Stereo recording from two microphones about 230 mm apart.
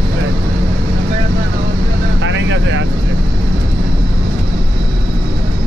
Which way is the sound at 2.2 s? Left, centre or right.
Right.